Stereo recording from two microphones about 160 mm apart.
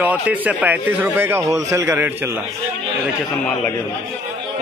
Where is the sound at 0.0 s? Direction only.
10° right (ahead or behind).